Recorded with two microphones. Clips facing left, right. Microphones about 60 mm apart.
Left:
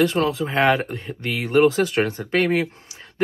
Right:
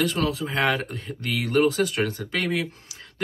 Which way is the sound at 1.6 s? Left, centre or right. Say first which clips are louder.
Left 5 dB; left.